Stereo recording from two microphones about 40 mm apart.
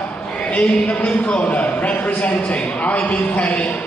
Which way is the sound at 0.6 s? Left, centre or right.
Left.